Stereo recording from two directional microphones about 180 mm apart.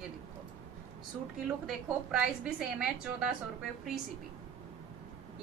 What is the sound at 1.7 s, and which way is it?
A woman's voice, centre (ahead or behind).